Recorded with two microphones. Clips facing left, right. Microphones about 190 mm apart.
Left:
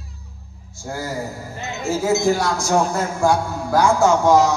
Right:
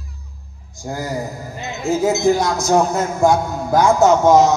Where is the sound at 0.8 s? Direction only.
15° right (ahead or behind).